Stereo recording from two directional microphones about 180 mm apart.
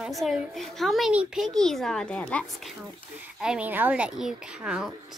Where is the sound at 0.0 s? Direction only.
Centre (ahead or behind).